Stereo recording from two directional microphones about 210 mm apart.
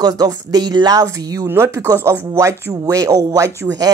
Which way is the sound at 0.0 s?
20° right (ahead or behind).